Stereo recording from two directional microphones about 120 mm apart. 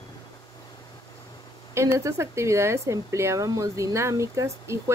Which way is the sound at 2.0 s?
25° right (ahead or behind).